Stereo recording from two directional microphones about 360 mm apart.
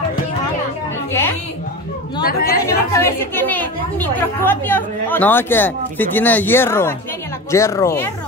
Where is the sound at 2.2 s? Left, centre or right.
Left.